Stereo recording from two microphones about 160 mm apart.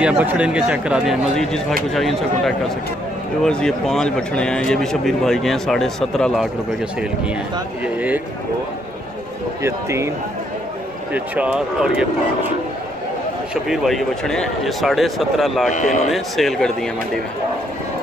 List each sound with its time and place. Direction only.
0.0 s speech: 10° right (ahead or behind)
7.8 s speech: 10° right (ahead or behind)
9.6 s speech: 15° right (ahead or behind)
11.1 s speech: 10° right (ahead or behind)
13.7 s speech: centre (ahead or behind)